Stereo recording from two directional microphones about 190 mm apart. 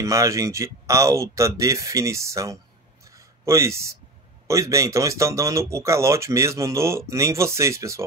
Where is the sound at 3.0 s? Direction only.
15° right (ahead or behind).